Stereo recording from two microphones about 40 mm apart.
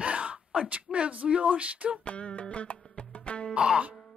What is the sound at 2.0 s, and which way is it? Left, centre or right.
Music, left.